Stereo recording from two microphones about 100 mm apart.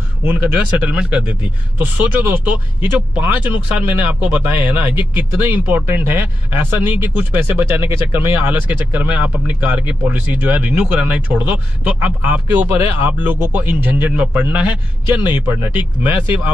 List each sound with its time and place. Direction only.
0.2 s speech: 15° right (ahead or behind)